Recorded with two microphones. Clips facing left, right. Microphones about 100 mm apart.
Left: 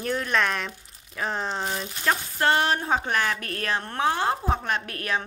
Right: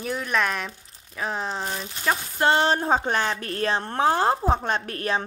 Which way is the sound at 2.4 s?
25° right (ahead or behind).